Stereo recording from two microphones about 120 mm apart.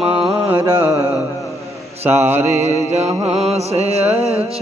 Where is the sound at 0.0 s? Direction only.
10° right (ahead or behind).